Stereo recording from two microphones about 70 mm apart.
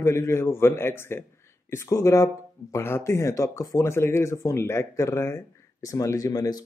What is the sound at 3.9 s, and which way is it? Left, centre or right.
Speech, left.